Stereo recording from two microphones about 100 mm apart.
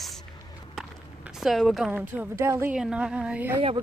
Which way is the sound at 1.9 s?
15° right (ahead or behind).